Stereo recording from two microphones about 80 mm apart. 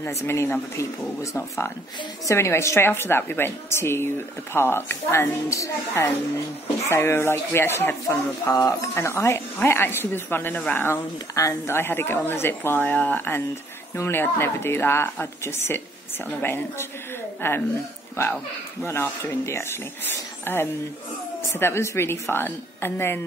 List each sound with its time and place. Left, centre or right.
0.0 s a woman's voice: left
11.3 s a woman's voice: left
18.9 s a woman's voice: left